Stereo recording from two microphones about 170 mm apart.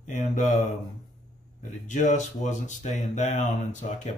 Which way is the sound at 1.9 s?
45° left (ahead or behind).